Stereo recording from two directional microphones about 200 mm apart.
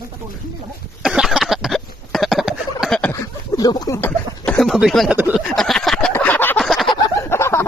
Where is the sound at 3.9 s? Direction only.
10° left (ahead or behind).